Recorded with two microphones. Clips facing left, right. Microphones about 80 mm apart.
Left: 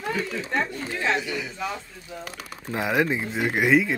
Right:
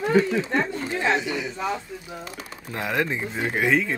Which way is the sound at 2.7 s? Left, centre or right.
Centre.